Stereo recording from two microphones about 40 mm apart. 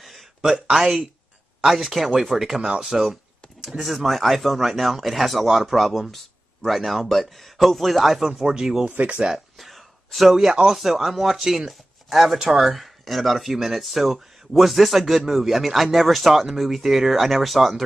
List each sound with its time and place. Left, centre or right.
0.4 s speech: centre
3.8 s speech: centre
8.9 s speech: right
9.3 s speech: centre